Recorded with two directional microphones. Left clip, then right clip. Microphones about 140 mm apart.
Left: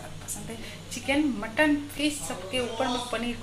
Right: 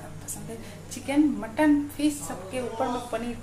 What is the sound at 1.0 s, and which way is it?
A woman's voice, 5° right (ahead or behind).